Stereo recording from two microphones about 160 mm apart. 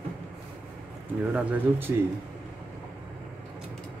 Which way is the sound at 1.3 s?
10° right (ahead or behind).